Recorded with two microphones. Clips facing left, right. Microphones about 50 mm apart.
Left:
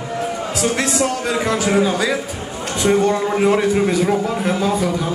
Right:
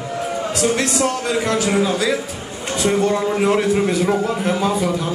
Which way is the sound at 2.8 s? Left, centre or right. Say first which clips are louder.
Left 2 dB; centre.